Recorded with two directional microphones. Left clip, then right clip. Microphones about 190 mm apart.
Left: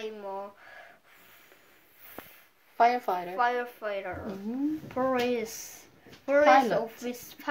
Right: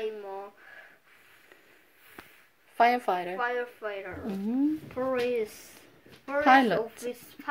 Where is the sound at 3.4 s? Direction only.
45° left (ahead or behind).